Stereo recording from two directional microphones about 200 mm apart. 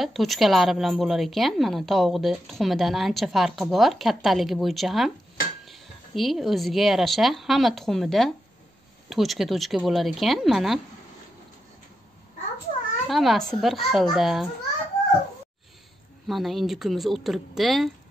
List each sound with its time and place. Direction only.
0.0 s a woman's voice: centre (ahead or behind)
13.0 s a woman's voice: centre (ahead or behind)
16.3 s a woman's voice: centre (ahead or behind)